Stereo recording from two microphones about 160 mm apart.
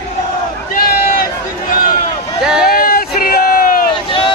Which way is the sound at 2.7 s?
65° left (ahead or behind).